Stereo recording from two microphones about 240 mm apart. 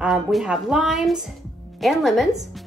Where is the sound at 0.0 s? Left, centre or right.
Centre.